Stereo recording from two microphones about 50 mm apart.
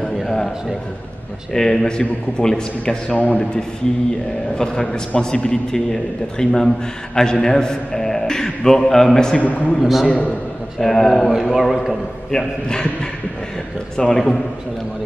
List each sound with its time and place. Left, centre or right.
0.2 s a sound: centre
1.5 s a man's voice: centre
3.2 s a man's voice: left
4.8 s a man's voice: centre
9.4 s a man's voice: left
9.8 s a man's voice: centre
10.0 s a man's voice: left
10.8 s a man's voice: centre
12.3 s a man's voice: centre